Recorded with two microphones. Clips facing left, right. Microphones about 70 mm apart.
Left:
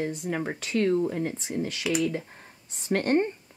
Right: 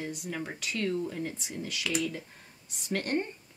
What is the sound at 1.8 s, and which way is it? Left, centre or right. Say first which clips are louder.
Speech: left 5 dB; centre.